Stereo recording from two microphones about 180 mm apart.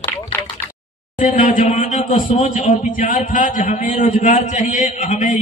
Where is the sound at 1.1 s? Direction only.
45° left (ahead or behind).